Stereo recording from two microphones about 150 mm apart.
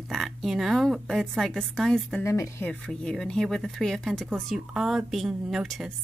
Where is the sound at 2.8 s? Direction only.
5° left (ahead or behind).